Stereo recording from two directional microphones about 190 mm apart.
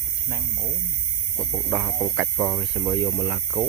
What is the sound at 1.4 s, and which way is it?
Speech, 10° right (ahead or behind).